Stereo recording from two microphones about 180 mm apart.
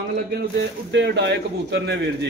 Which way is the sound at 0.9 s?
80° right.